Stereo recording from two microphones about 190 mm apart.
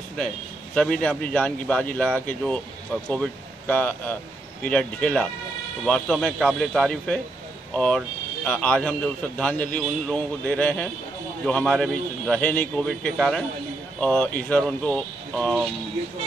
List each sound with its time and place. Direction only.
0.7 s a man's voice: 5° left (ahead or behind)